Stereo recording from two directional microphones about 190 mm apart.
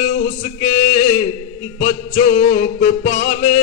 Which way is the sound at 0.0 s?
50° left (ahead or behind).